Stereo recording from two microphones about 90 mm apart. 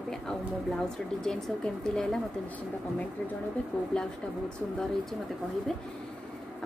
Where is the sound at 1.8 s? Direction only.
5° left (ahead or behind).